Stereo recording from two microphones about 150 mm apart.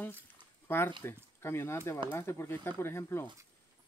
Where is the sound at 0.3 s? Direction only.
15° left (ahead or behind).